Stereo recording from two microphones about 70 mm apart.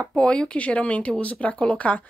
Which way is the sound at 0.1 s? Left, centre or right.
Centre.